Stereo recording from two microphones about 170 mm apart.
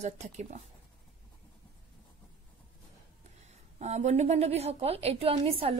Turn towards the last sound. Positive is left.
turn(degrees=-35)  # may be behind; listen again after turning